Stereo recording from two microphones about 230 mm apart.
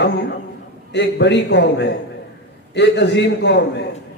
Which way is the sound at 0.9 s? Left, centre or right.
Left.